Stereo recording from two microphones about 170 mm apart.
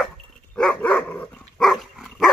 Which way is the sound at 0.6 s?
5° left (ahead or behind).